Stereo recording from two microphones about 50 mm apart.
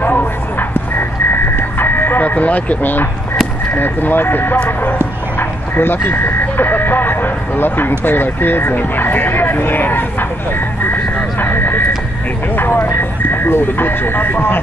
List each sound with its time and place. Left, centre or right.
0.0 s music: left
3.7 s speech: left
11.3 s a sound: left
12.5 s speech: left